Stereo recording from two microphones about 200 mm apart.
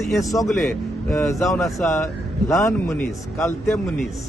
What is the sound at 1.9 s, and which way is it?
A man's voice, 15° left (ahead or behind).